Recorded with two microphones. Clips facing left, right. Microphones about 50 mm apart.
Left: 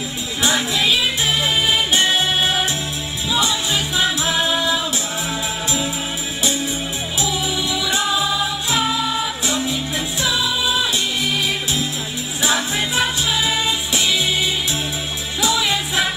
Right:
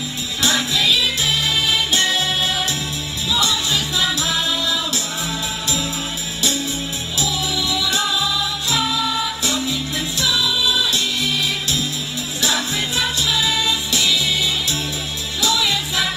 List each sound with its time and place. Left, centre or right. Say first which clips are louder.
0.4 s music: left 1 dB; left
7.2 s music: even; left